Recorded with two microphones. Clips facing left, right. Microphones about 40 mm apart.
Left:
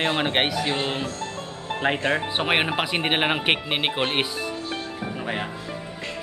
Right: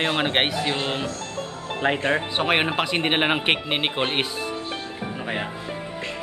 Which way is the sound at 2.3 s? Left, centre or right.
Centre.